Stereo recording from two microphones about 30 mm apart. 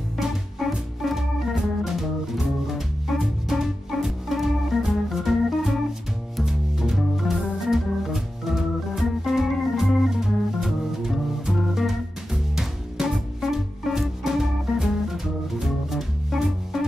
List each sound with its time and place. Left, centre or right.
0.6 s organ: centre
6.4 s music: centre
7.0 s organ: centre
10.1 s music: centre
13.1 s music: centre